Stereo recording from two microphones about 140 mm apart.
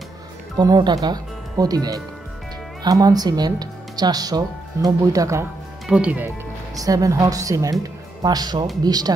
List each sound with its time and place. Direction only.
0.6 s speech: 30° right (ahead or behind)
5.9 s speech: 10° right (ahead or behind)
6.7 s speech: 25° right (ahead or behind)